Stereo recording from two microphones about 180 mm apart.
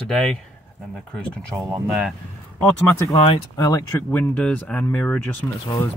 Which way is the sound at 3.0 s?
30° left (ahead or behind).